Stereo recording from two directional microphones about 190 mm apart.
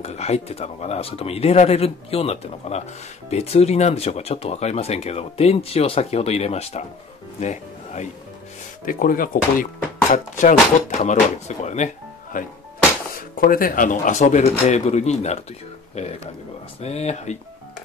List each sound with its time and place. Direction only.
0.0 s speech: 35° left (ahead or behind)